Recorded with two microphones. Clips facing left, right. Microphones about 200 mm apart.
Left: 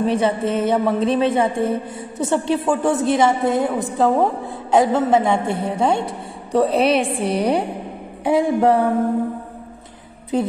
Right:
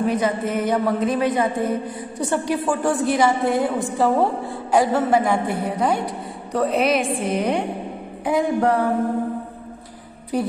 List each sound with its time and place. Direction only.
0.0 s a woman's voice: 30° left (ahead or behind)